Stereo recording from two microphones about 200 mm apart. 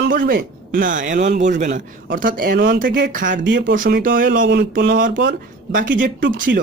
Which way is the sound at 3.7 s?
40° right (ahead or behind).